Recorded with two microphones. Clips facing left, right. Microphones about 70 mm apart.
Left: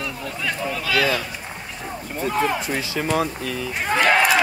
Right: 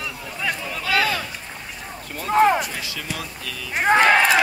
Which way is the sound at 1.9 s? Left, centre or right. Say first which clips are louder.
Left 6 dB; centre.